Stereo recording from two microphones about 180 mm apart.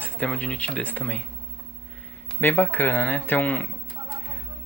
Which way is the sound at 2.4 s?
10° left (ahead or behind).